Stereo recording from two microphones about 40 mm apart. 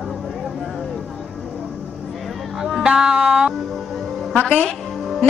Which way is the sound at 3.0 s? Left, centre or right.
Right.